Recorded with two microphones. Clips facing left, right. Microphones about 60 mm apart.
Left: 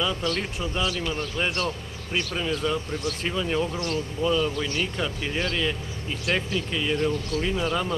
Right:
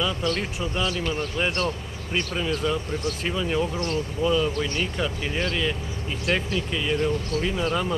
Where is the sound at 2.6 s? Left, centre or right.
Centre.